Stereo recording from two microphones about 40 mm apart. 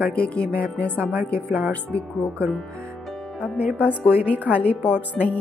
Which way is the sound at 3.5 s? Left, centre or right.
Right.